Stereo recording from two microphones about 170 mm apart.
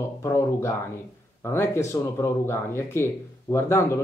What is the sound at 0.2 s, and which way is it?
Speech, 15° left (ahead or behind).